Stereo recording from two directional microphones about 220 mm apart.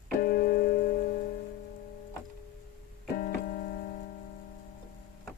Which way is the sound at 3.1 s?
40° left (ahead or behind).